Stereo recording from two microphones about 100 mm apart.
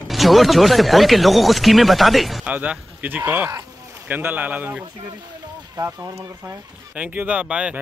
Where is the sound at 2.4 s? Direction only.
15° right (ahead or behind).